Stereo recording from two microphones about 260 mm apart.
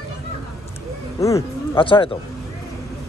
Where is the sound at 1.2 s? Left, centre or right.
Centre.